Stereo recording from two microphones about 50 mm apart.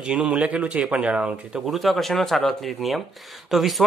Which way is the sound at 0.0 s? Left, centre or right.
Centre.